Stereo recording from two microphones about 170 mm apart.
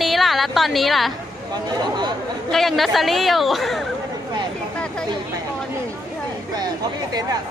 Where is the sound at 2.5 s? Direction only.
Centre (ahead or behind).